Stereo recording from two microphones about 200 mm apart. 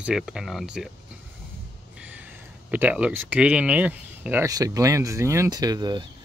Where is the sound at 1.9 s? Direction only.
5° right (ahead or behind).